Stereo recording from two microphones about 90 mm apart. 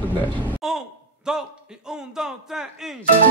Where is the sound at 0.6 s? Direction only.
5° right (ahead or behind).